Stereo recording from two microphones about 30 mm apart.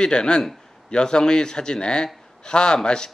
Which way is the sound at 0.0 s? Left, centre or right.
Left.